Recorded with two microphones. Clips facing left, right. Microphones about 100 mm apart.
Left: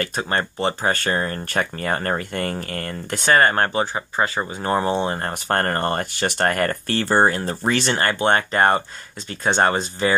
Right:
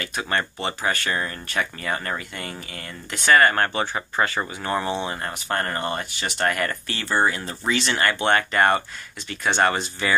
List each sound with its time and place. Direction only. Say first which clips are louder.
0.0 s speech: left 3 dB; 35° left (ahead or behind); by 3.2 s 50° left (ahead or behind)
3.3 s speech: left 1 dB; 30° left (ahead or behind); by 7.9 s 45° left (ahead or behind)
7.9 s speech: left 1 dB; 35° left (ahead or behind)